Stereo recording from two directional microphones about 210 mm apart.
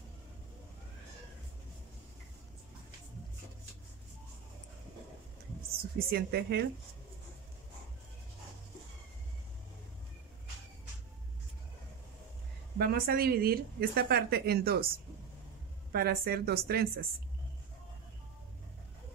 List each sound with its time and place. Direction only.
5.9 s a woman's voice: 45° right (ahead or behind)
12.7 s a woman's voice: 45° right (ahead or behind)
15.9 s a woman's voice: 45° right (ahead or behind)